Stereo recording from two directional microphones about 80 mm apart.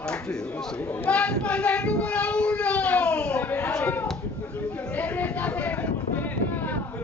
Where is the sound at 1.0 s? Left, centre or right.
Centre.